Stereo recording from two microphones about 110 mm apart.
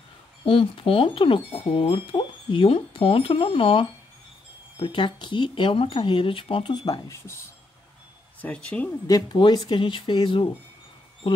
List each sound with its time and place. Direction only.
0.5 s speech: 55° left (ahead or behind); by 7.2 s 35° left (ahead or behind)
8.4 s speech: 10° left (ahead or behind)
9.0 s speech: 35° left (ahead or behind)
9.4 s speech: 45° left (ahead or behind)